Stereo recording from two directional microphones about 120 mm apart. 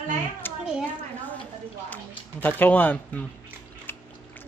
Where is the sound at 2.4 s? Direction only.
15° left (ahead or behind).